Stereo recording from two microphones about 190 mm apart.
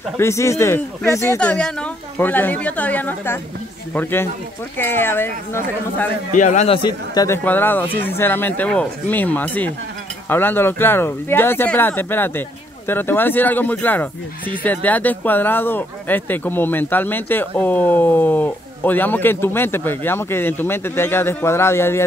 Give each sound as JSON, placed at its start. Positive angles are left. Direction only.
{"t": 0.2, "sound": "speech", "side_deg": 15}
{"t": 6.3, "sound": "a man's voice", "side_deg": 40}
{"t": 6.8, "sound": "speech", "side_deg": 20}
{"t": 7.4, "sound": "speech", "side_deg": 10}